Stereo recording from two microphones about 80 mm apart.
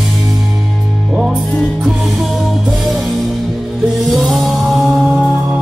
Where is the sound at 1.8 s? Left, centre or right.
Centre.